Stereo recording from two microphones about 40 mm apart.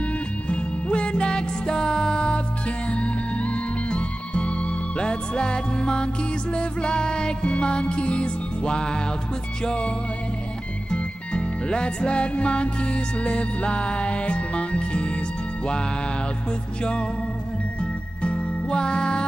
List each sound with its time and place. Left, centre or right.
0.5 s music: left
18.2 s music: left